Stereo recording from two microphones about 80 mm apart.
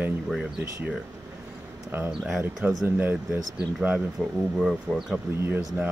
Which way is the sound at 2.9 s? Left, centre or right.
Right.